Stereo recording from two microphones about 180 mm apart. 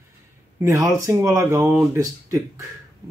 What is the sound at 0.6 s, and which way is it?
Speech, 20° right (ahead or behind).